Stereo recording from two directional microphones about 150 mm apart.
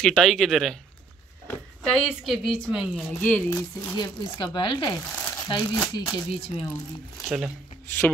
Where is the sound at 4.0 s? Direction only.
35° left (ahead or behind).